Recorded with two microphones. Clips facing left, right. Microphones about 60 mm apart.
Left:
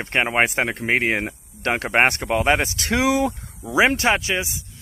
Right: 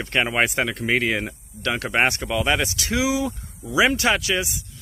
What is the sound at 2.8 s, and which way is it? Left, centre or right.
Speech, left.